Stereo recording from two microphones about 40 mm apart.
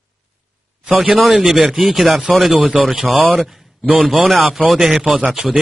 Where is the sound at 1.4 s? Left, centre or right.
Centre.